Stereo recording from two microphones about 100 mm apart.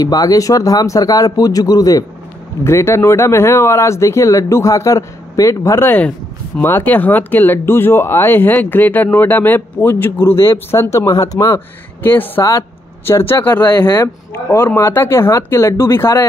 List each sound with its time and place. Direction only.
0.0 s speech: 35° left (ahead or behind)
2.6 s speech: 25° left (ahead or behind)
12.0 s speech: 20° left (ahead or behind)